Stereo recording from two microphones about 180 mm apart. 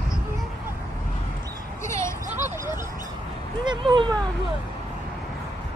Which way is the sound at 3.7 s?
25° right (ahead or behind).